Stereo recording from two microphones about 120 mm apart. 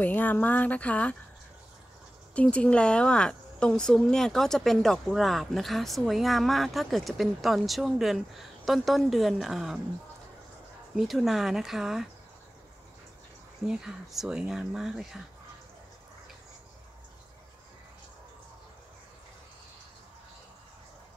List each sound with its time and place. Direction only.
0.0 s speech: 15° left (ahead or behind)
2.3 s a woman's voice: 10° left (ahead or behind)
11.0 s a woman's voice: 5° right (ahead or behind)
13.7 s a woman's voice: 5° right (ahead or behind)